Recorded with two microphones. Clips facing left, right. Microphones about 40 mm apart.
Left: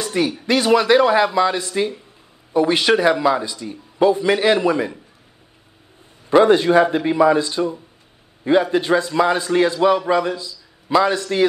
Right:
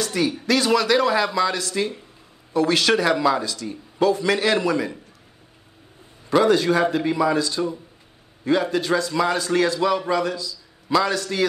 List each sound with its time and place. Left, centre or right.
0.0 s a sound: left
0.7 s a man's voice: centre
6.3 s a man's voice: left